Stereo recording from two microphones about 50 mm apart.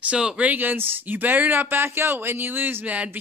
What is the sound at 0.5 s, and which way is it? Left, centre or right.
Speech, right.